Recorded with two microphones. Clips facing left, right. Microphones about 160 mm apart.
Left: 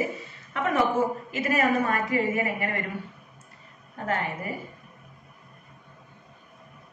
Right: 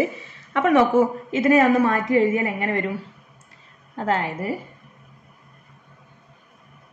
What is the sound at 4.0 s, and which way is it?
Speech, 90° right.